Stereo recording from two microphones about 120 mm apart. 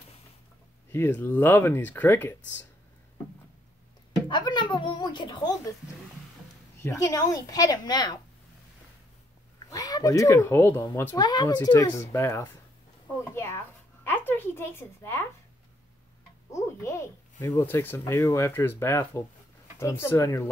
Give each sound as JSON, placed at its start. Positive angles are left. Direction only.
{"t": 0.9, "sound": "speech", "side_deg": 20}
{"t": 4.1, "sound": "music", "side_deg": 40}
{"t": 6.8, "sound": "speech", "side_deg": 25}
{"t": 9.7, "sound": "speech", "side_deg": 30}
{"t": 11.1, "sound": "speech", "side_deg": 35}
{"t": 16.5, "sound": "speech", "side_deg": 25}